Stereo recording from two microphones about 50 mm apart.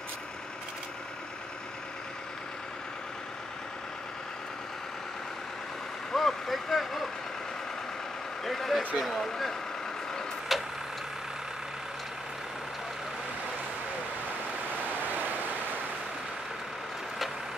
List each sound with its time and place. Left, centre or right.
6.1 s speech: centre
8.5 s speech: centre
10.5 s vehicle: centre
14.9 s vehicle: right